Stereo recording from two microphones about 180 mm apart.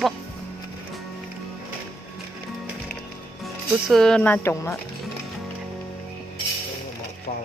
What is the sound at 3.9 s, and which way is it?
Speech, 5° left (ahead or behind).